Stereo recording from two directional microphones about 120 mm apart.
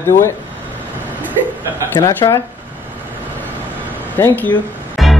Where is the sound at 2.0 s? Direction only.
40° left (ahead or behind).